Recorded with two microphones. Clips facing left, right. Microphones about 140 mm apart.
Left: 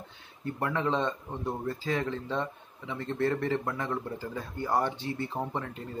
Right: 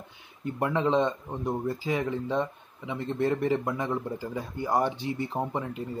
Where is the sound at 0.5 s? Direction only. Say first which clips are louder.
Right 4 dB; 20° right (ahead or behind).